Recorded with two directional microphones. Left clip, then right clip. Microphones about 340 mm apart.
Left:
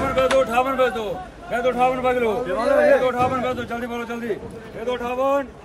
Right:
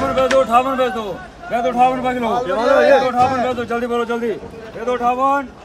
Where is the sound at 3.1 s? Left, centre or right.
Centre.